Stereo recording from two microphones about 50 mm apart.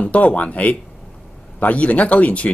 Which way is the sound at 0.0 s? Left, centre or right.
Left.